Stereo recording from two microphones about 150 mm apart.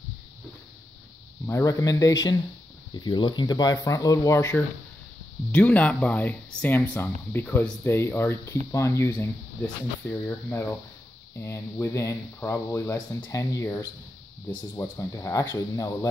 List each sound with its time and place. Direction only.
1.5 s speech: 20° left (ahead or behind)